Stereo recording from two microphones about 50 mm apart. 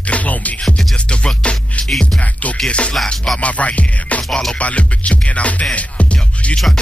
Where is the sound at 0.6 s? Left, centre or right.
Centre.